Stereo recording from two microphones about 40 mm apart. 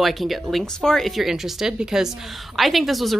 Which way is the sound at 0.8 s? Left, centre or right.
Centre.